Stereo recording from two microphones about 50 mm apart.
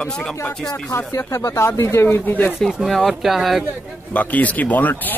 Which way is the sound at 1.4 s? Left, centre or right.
Left.